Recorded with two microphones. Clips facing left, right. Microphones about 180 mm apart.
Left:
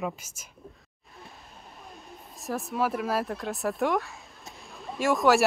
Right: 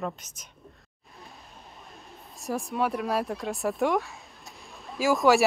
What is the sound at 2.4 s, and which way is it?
Speech, centre (ahead or behind).